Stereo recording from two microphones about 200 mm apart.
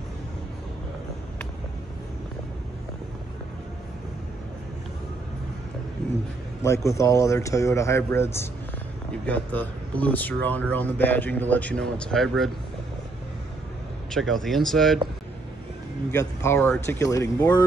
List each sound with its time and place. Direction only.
6.6 s speech: 15° left (ahead or behind)
14.1 s speech: centre (ahead or behind)
16.1 s speech: 15° left (ahead or behind)